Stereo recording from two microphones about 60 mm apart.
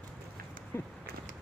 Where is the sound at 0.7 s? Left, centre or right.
Left.